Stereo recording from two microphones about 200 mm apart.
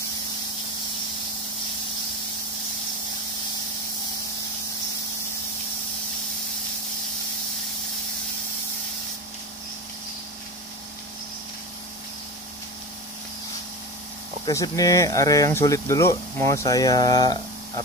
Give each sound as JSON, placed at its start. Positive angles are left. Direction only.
{"t": 14.4, "sound": "speech", "side_deg": 15}